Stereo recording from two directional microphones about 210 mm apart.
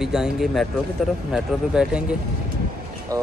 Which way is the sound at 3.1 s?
15° right (ahead or behind).